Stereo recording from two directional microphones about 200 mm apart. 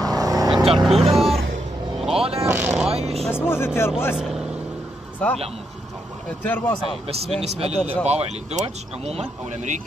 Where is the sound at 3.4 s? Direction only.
10° left (ahead or behind).